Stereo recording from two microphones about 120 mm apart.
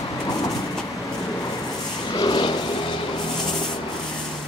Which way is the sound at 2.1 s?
40° left (ahead or behind).